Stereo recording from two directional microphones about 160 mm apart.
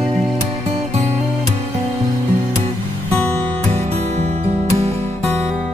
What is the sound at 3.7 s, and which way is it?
Music, 45° right (ahead or behind).